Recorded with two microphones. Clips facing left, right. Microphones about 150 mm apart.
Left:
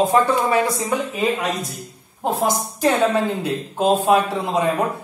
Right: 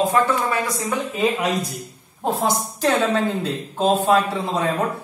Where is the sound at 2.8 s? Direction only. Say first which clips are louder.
Left 2 dB; 10° left (ahead or behind).